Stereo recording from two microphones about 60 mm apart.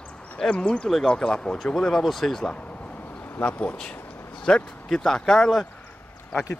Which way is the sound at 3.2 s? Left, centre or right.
Left.